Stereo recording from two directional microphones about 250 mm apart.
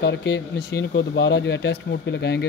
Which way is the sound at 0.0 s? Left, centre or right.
Left.